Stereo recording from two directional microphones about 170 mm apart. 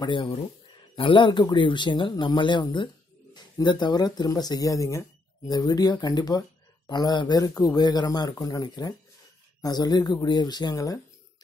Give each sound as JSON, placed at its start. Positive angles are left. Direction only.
{"t": 0.0, "sound": "speech", "side_deg": 30}